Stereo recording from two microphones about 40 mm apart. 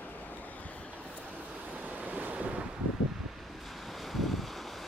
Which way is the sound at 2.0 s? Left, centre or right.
Right.